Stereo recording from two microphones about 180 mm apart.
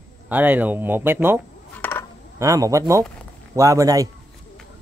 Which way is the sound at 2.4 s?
15° right (ahead or behind).